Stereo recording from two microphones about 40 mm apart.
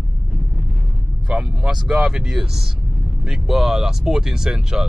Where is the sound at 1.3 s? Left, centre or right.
Centre.